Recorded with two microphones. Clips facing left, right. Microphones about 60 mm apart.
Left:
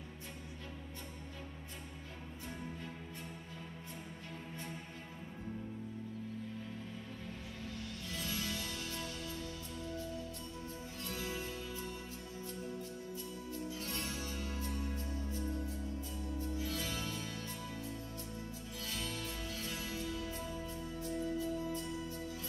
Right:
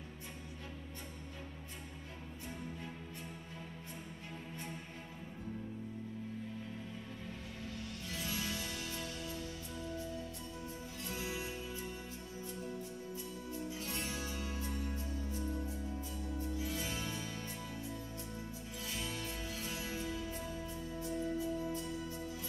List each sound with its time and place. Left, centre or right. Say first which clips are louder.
8.1 s music: even; centre
11.1 s music: even; centre
13.1 s music: even; right
18.9 s music: even; centre